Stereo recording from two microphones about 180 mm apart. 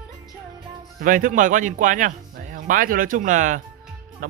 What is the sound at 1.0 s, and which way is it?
A man's voice, 45° right (ahead or behind).